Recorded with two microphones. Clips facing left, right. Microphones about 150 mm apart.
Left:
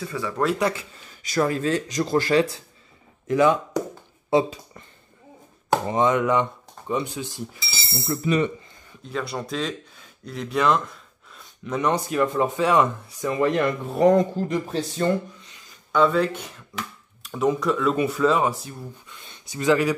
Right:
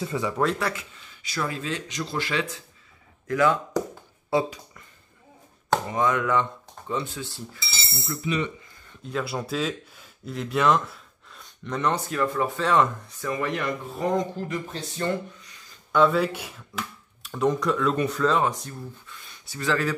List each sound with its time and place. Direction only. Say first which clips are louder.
0.0 s speech: right 2 dB; 20° right (ahead or behind)
0.7 s speech: left 2 dB; 45° left (ahead or behind)
3.3 s speech: left 3 dB; 20° left (ahead or behind)
5.9 s speech: left 6 dB; 25° left (ahead or behind)
7.9 s speech: left 6 dB; 40° left (ahead or behind)
9.0 s speech: even; 5° right (ahead or behind)
13.3 s speech: left 6 dB; 30° left (ahead or behind)
13.6 s speech: left 8 dB; 70° left (ahead or behind)
14.5 s speech: left 6 dB; 30° left (ahead or behind)
15.9 s speech: left 1 dB; centre (ahead or behind)
19.2 s speech: left 7 dB; 20° left (ahead or behind)